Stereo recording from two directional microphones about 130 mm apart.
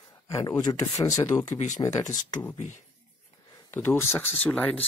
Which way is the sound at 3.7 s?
20° left (ahead or behind).